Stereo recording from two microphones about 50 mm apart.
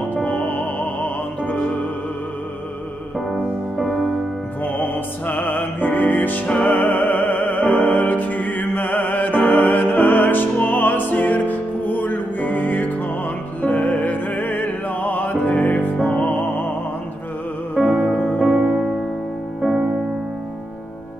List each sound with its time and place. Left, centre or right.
0.1 s music: left
4.7 s music: left
17.8 s music: centre
18.4 s music: centre